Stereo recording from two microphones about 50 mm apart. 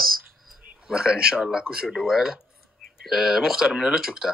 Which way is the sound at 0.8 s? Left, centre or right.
Centre.